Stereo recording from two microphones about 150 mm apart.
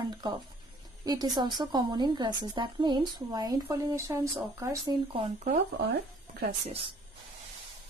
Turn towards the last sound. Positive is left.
turn(degrees=-40)  # may be behind; listen again after turning